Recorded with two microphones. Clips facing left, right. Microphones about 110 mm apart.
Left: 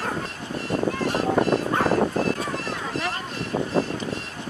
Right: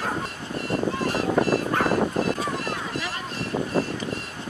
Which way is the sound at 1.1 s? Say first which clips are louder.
Left 1 dB; centre (ahead or behind).